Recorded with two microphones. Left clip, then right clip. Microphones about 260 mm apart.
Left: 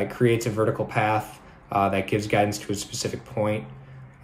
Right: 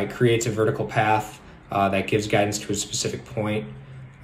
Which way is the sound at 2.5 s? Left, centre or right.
Right.